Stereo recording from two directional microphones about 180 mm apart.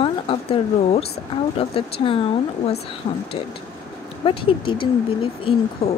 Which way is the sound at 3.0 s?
30° left (ahead or behind).